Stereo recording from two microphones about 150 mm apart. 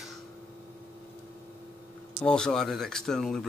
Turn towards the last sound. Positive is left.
turn(degrees=0)  # may be behind; listen again after turning